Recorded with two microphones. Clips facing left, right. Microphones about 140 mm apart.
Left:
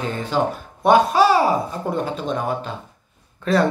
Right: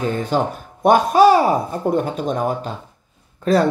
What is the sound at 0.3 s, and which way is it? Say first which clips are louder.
Speech: right 1 dB; 45° right (ahead or behind).